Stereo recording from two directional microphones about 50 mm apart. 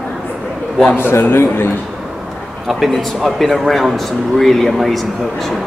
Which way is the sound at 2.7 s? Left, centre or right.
Centre.